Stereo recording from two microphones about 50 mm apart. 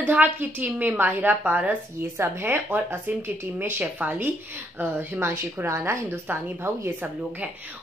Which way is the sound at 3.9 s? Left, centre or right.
Right.